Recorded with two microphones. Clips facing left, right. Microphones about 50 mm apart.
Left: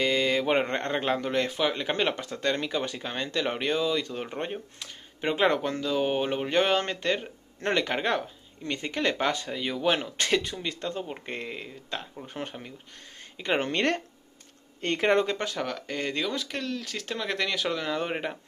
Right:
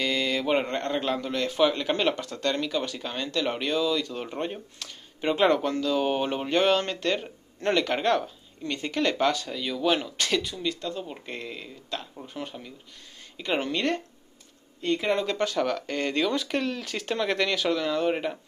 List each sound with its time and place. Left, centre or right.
0.0 s mantra: left
0.4 s speech: left
1.6 s speech: centre
12.4 s speech: left
14.8 s speech: left
15.2 s speech: centre
15.6 s speech: centre
16.5 s speech: centre
17.8 s speech: left